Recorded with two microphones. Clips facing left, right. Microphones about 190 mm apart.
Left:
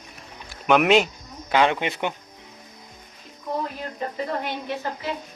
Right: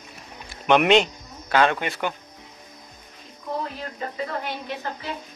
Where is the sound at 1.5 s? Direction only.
15° left (ahead or behind).